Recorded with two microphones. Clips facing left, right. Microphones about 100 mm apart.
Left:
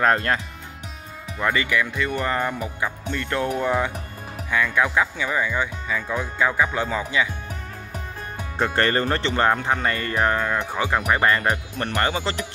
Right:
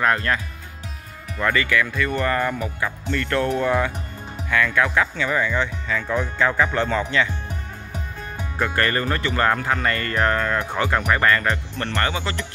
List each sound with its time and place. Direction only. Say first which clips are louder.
0.0 s speech: left 1 dB; 35° left (ahead or behind)
1.4 s speech: right 1 dB; 20° left (ahead or behind)
8.5 s speech: left 1 dB; 25° left (ahead or behind); by 11.1 s 5° left (ahead or behind)
11.1 s speech: even; 20° left (ahead or behind)
12.1 s speech: left 1 dB; 35° left (ahead or behind)